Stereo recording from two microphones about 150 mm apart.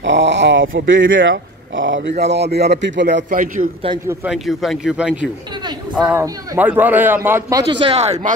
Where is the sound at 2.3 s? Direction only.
90° right.